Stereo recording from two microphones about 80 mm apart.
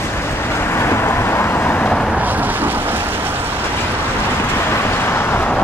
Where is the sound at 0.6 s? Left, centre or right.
Left.